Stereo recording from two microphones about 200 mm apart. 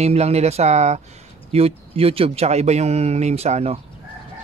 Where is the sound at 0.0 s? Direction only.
30° right (ahead or behind).